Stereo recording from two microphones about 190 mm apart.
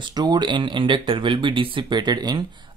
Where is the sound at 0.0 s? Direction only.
20° right (ahead or behind).